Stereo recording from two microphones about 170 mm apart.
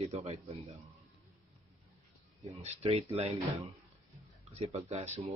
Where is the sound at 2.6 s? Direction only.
35° right (ahead or behind).